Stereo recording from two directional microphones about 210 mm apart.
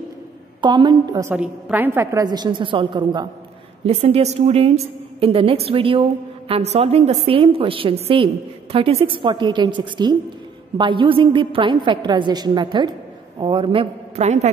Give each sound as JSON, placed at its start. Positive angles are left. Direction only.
{"t": 0.6, "sound": "a woman's voice", "side_deg": -20}
{"t": 1.3, "sound": "a woman's voice", "side_deg": -5}